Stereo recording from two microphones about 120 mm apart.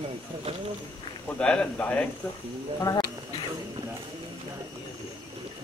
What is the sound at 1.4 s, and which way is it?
Speech, 10° left (ahead or behind).